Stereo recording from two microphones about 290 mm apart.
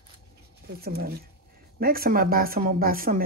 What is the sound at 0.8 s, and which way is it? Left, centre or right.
Speech, right.